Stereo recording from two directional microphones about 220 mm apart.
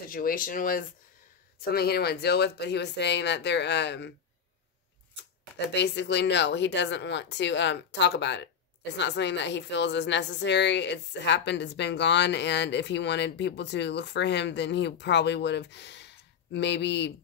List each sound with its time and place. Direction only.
0.0 s speech: 40° left (ahead or behind)
5.7 s speech: 50° left (ahead or behind)